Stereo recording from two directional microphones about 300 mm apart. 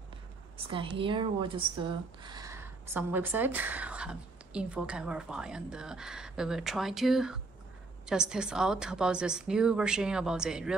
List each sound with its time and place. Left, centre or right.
0.7 s a woman's voice: centre
2.2 s a woman's voice: centre